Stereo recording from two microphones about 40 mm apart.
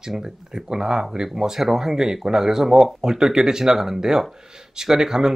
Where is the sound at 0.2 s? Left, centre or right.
Centre.